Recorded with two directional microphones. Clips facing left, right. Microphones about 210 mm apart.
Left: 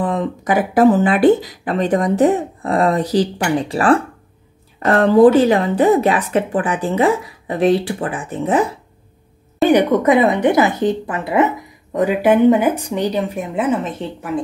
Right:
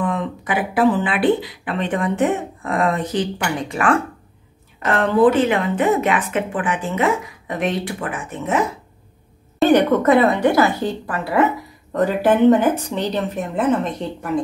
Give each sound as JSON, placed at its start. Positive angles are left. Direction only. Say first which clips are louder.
{"t": 0.0, "sound": "speech", "louder": "left 3 dB", "side_deg": 35}
{"t": 9.7, "sound": "speech", "louder": "left 1 dB", "side_deg": 15}